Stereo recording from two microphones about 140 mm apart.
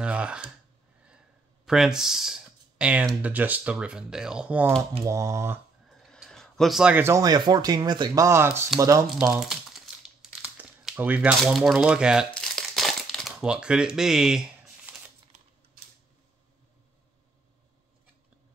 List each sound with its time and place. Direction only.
0.0 s a sound: 5° right (ahead or behind)
1.7 s speech: 5° right (ahead or behind)
5.0 s speech: 20° right (ahead or behind)
6.0 s a sound: centre (ahead or behind)
7.1 s speech: 25° right (ahead or behind)
9.3 s crumpling: centre (ahead or behind)
11.4 s speech: centre (ahead or behind)
12.4 s crumpling: centre (ahead or behind)